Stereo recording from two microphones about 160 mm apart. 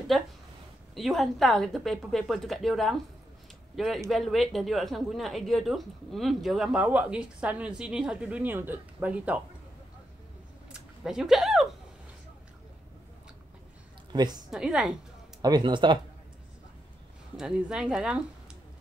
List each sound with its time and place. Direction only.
0.1 s a woman's voice: centre (ahead or behind)
10.7 s a sound: 5° right (ahead or behind)
14.1 s speech: 25° right (ahead or behind)
14.5 s a woman's voice: 5° right (ahead or behind)
15.4 s speech: 30° right (ahead or behind)
17.4 s a woman's voice: 5° right (ahead or behind)